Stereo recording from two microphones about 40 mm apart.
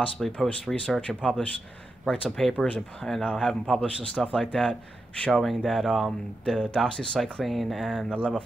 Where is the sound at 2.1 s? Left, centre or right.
Centre.